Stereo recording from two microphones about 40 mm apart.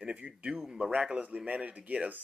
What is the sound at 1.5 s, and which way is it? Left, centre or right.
Speech, right.